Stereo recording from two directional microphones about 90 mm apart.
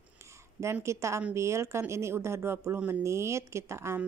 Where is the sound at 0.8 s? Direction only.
30° right (ahead or behind).